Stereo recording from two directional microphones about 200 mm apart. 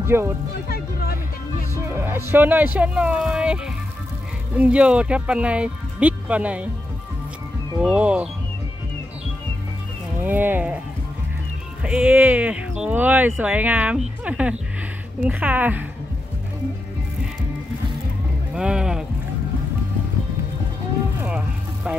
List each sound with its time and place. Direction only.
0.0 s speech: 10° right (ahead or behind)
0.7 s music: 50° left (ahead or behind)
1.9 s speech: 10° right (ahead or behind)
7.8 s speech: 5° right (ahead or behind)
10.2 s speech: 10° right (ahead or behind)
11.8 s speech: 5° right (ahead or behind)
18.5 s music: 5° right (ahead or behind)
21.2 s music: 5° right (ahead or behind)